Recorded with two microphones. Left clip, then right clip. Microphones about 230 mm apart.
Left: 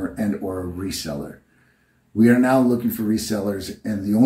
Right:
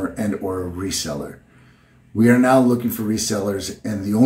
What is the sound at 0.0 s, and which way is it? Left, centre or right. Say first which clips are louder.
Speech: right 2 dB; centre.